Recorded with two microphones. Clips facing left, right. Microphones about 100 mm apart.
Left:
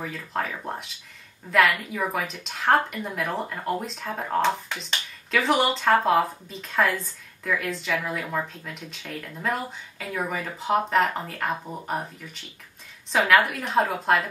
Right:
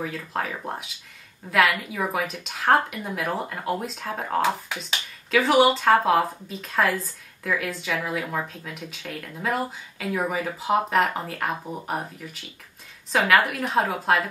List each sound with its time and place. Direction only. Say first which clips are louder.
0.0 s a woman's voice: right 1 dB; centre (ahead or behind)